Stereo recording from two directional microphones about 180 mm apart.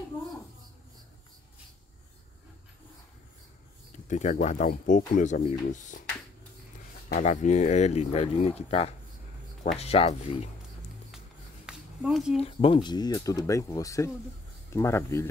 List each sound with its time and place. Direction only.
4.1 s speech: 40° left (ahead or behind)
7.1 s speech: 40° left (ahead or behind)
11.6 s a sound: 5° right (ahead or behind)
12.4 s speech: 30° left (ahead or behind)